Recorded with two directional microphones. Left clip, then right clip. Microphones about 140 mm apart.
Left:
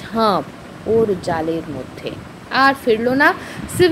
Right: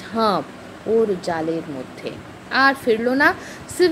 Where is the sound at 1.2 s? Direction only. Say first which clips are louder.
Left 3 dB; centre (ahead or behind).